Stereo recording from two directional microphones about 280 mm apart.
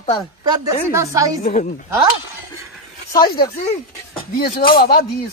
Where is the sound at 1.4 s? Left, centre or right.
Left.